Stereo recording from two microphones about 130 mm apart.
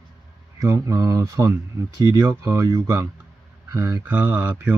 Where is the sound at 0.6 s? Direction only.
25° right (ahead or behind).